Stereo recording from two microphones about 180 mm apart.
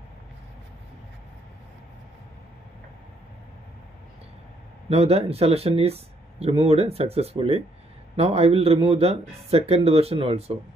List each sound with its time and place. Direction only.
4.8 s speech: 35° right (ahead or behind)